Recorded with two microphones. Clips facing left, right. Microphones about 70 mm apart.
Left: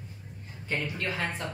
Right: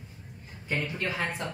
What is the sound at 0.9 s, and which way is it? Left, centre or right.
Speech, centre.